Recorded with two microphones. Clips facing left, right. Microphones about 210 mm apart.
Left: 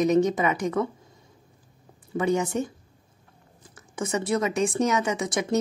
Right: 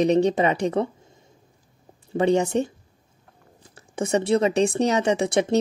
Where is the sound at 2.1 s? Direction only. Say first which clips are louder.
Right 4 dB; 30° right (ahead or behind).